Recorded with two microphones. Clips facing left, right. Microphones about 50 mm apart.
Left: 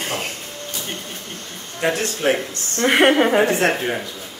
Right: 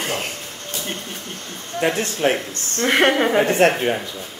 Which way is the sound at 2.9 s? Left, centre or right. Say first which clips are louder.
Left 2 dB; centre.